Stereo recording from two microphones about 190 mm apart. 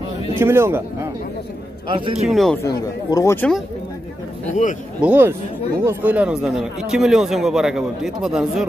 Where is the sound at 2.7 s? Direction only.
15° left (ahead or behind).